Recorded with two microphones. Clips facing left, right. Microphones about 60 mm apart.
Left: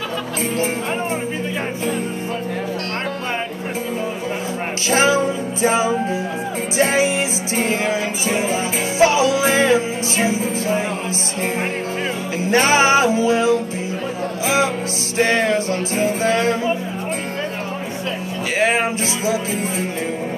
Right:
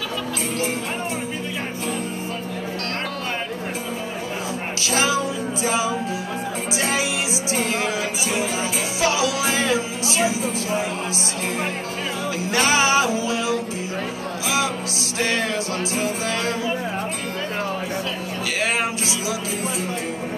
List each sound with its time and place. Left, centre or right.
4.8 s music: left
12.4 s music: left
15.1 s music: left
18.6 s music: left